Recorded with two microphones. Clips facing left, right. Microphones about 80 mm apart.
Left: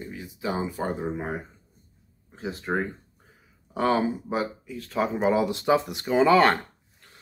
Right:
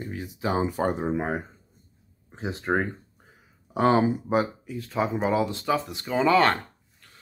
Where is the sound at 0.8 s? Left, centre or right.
Right.